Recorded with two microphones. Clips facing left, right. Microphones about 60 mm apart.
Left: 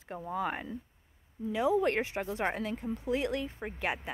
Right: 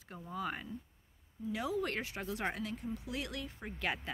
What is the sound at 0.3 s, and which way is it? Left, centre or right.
Speech, left.